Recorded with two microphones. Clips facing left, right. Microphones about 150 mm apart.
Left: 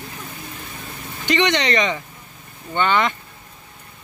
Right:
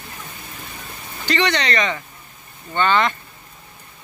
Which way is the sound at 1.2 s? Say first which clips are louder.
Left 2 dB; 20° left (ahead or behind).